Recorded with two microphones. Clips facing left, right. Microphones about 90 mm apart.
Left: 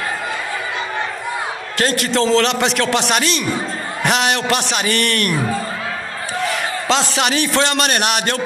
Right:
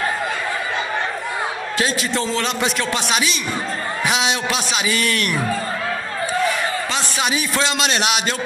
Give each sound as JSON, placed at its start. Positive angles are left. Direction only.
{"t": 1.8, "sound": "a man's voice", "side_deg": 60}
{"t": 4.0, "sound": "a man's voice", "side_deg": 60}
{"t": 6.9, "sound": "a man's voice", "side_deg": 80}